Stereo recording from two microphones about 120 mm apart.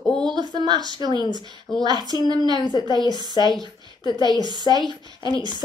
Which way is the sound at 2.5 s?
35° left (ahead or behind).